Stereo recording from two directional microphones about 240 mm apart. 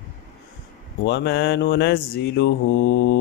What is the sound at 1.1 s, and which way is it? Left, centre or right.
Mantra, left.